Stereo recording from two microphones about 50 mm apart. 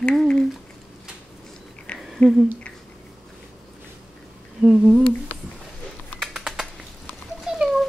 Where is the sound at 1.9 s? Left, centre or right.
Left.